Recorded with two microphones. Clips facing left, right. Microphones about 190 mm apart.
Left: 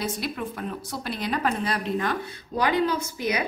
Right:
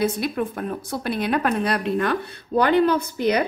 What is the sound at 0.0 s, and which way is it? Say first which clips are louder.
A woman's voice: right 7 dB; 50° right (ahead or behind).